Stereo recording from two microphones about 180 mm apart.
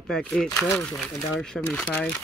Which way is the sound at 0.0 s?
5° left (ahead or behind).